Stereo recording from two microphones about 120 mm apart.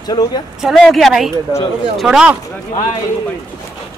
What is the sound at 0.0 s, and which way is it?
Speech, 35° left (ahead or behind).